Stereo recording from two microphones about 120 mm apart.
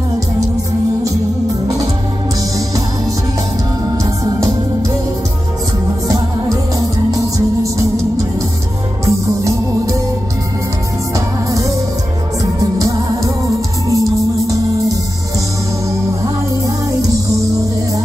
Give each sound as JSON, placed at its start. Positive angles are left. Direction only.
{"t": 4.0, "sound": "music", "side_deg": -30}
{"t": 7.1, "sound": "music", "side_deg": -30}
{"t": 9.0, "sound": "music", "side_deg": -25}
{"t": 11.1, "sound": "music", "side_deg": -25}
{"t": 12.7, "sound": "music", "side_deg": -30}
{"t": 16.6, "sound": "music", "side_deg": -25}